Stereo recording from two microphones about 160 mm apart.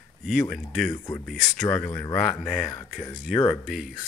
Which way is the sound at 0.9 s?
20° left (ahead or behind).